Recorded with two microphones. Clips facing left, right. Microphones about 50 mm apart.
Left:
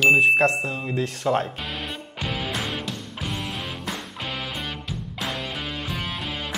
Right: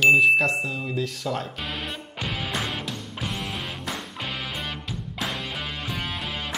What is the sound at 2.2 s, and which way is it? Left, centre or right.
Music, centre.